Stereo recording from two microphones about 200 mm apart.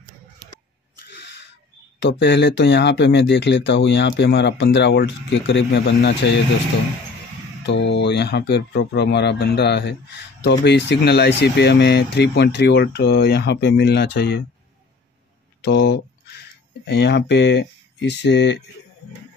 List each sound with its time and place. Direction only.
2.0 s speech: 65° left (ahead or behind)
7.6 s speech: 60° left (ahead or behind)
15.6 s speech: 60° left (ahead or behind)